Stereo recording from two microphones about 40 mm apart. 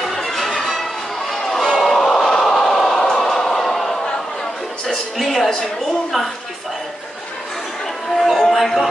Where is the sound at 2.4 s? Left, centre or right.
Centre.